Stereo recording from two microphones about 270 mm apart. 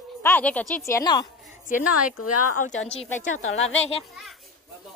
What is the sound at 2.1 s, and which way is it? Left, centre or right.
Speech, left.